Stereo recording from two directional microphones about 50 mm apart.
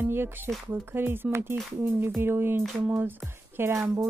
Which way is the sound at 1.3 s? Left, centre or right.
Right.